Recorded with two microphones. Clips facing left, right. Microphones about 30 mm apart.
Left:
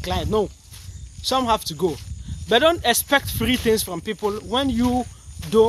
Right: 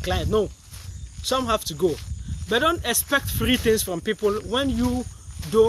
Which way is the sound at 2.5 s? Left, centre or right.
Left.